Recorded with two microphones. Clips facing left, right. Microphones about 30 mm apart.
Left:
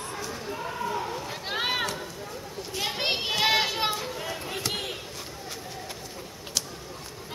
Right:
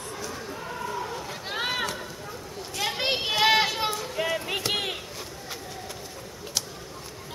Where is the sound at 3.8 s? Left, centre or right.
Centre.